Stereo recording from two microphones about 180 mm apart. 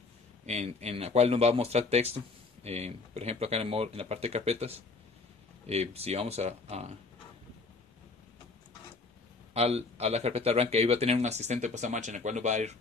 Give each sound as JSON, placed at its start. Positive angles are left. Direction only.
{"t": 0.5, "sound": "speech", "side_deg": -40}
{"t": 9.5, "sound": "speech", "side_deg": -35}